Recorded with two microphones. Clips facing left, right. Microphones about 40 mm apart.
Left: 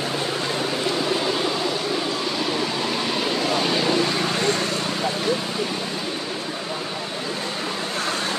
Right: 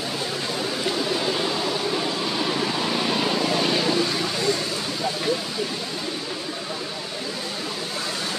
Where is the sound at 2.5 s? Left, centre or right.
Centre.